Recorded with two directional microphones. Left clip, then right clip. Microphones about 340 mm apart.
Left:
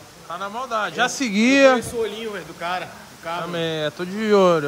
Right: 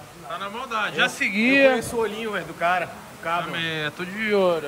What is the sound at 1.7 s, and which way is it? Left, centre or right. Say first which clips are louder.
A man's voice: left 1 dB; centre.